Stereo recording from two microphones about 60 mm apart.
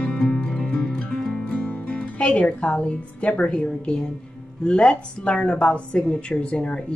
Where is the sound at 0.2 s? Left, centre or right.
Centre.